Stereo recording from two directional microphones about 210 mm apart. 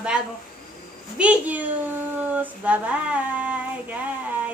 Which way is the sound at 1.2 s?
5° right (ahead or behind).